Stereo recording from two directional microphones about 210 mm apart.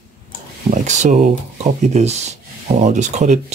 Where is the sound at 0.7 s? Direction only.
35° right (ahead or behind).